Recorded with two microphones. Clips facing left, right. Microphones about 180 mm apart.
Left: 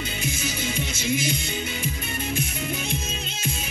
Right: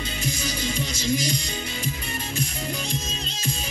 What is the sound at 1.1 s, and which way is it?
Music, 35° right (ahead or behind).